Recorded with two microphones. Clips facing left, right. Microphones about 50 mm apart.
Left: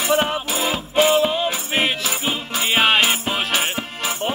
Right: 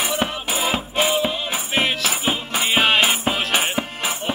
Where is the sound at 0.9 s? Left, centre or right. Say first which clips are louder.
Left 7 dB; centre.